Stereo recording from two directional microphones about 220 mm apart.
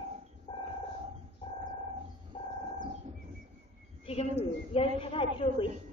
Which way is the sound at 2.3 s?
25° left (ahead or behind).